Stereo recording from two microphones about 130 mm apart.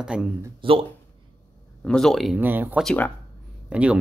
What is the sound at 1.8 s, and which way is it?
Speech, 5° left (ahead or behind).